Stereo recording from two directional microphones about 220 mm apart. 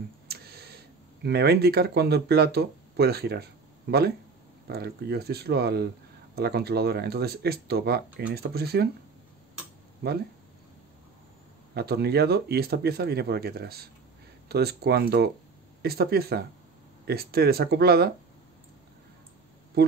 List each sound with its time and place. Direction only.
0.3 s tick: 45° right (ahead or behind)
1.2 s speech: 45° right (ahead or behind)
4.6 s speech: 45° right (ahead or behind)
10.0 s speech: 45° right (ahead or behind)
11.7 s speech: 45° right (ahead or behind)
19.8 s speech: 50° right (ahead or behind)